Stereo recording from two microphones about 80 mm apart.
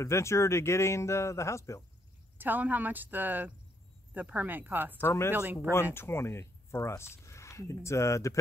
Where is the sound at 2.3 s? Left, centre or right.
Right.